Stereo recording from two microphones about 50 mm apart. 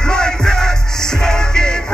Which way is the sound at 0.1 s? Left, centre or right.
Centre.